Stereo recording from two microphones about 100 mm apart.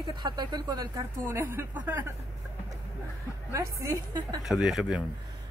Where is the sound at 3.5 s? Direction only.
30° right (ahead or behind).